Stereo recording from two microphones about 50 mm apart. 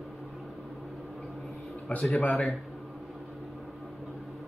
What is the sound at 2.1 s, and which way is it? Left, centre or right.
Speech, left.